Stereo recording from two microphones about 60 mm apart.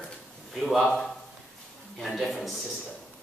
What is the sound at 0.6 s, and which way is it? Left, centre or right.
Speech, centre.